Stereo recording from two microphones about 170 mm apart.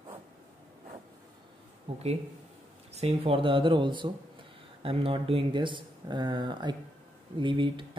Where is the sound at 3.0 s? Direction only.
35° right (ahead or behind).